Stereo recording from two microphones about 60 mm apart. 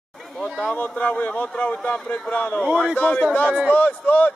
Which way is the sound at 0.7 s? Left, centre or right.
Left.